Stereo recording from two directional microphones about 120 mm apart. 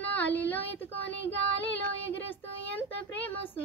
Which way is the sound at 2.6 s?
15° left (ahead or behind).